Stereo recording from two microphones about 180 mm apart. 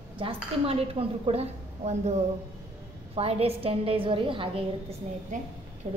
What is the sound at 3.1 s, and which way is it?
Speech, 35° right (ahead or behind).